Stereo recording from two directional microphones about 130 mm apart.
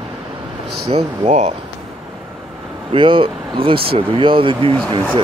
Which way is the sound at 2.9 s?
40° right (ahead or behind).